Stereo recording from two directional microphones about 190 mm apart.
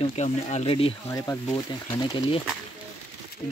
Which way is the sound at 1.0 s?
15° left (ahead or behind).